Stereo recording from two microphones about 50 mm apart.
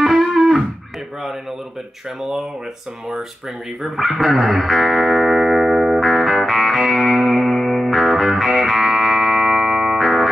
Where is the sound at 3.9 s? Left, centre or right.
Centre.